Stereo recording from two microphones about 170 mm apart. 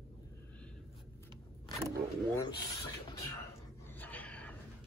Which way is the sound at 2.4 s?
25° left (ahead or behind).